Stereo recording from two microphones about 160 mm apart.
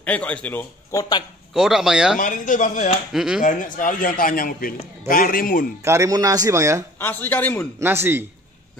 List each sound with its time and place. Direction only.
0.0 s speech: 10° left (ahead or behind)
1.5 s speech: 5° right (ahead or behind)
2.1 s a man's voice: 55° left (ahead or behind)
3.1 s speech: 5° right (ahead or behind)
3.4 s a man's voice: 55° left (ahead or behind)
5.9 s speech: 20° right (ahead or behind)
7.0 s speech: 10° left (ahead or behind)
7.8 s speech: 15° right (ahead or behind)